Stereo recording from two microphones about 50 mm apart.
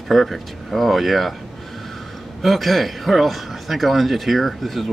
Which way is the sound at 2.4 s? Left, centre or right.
Centre.